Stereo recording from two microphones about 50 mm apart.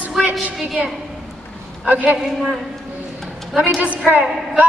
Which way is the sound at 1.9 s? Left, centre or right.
Right.